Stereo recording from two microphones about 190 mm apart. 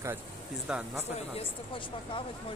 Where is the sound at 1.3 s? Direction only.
30° left (ahead or behind).